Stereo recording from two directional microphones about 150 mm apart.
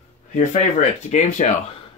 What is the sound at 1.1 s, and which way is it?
Speech, 50° left (ahead or behind).